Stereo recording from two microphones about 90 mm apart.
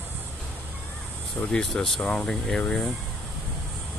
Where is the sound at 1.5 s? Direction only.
5° left (ahead or behind).